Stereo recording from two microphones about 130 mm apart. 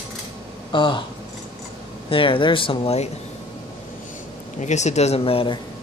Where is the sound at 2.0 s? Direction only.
45° left (ahead or behind).